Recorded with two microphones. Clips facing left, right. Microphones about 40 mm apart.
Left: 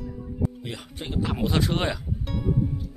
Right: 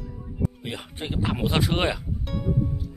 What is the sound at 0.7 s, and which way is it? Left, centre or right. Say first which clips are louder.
Speech: right 2 dB; right.